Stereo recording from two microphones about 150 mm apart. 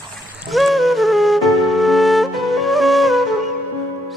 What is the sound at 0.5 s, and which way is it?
Music, centre (ahead or behind).